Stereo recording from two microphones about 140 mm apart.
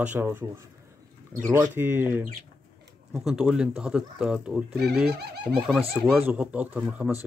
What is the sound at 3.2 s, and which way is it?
Speech, 5° right (ahead or behind).